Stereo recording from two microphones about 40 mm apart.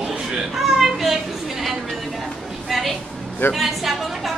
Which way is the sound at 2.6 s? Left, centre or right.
Centre.